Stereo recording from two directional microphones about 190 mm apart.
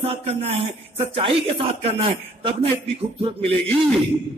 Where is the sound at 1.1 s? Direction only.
30° right (ahead or behind).